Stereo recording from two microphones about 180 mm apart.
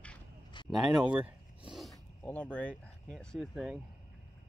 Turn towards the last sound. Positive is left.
turn(degrees=0)  # may be behind; listen again after turning